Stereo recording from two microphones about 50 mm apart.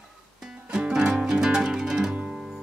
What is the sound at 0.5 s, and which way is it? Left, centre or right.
Music, right.